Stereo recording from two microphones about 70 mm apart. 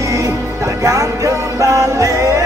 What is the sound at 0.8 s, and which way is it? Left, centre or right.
Music, right.